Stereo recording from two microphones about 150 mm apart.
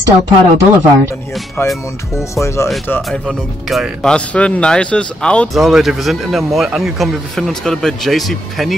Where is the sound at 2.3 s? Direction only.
20° left (ahead or behind).